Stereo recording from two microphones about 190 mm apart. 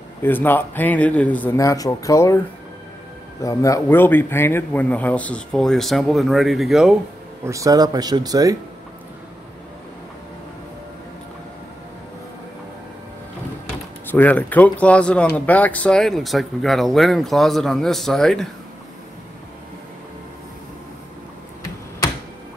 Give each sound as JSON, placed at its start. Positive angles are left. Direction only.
{"t": 0.2, "sound": "speech", "side_deg": 10}
{"t": 3.4, "sound": "speech", "side_deg": 15}
{"t": 7.4, "sound": "speech", "side_deg": -15}
{"t": 14.1, "sound": "speech", "side_deg": 10}